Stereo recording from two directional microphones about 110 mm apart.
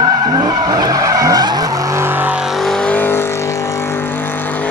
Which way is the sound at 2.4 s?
Centre (ahead or behind).